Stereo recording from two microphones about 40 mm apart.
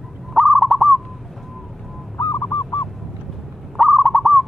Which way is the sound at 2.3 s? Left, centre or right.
Left.